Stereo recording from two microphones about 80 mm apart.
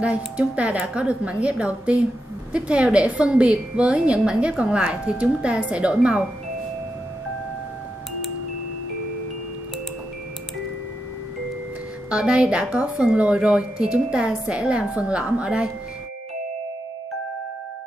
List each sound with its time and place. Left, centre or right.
0.0 s a woman's voice: centre
12.1 s a woman's voice: centre